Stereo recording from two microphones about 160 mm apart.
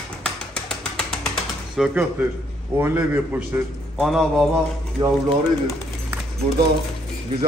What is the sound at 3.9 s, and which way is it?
Speech, centre (ahead or behind).